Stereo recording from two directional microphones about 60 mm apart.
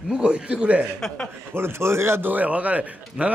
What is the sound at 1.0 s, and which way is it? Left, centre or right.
Speech, centre.